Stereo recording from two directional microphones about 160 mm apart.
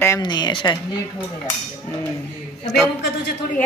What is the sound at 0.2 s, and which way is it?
Speech, 30° left (ahead or behind).